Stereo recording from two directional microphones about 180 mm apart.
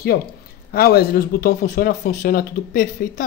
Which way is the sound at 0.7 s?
60° left (ahead or behind).